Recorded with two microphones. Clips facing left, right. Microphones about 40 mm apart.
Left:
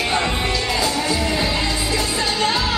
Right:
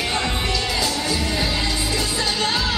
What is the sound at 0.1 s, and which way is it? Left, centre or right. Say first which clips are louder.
Music: left 3 dB; left.